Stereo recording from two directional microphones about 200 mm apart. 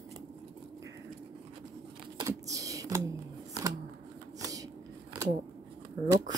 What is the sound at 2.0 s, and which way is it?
Computer keyboard, 15° right (ahead or behind).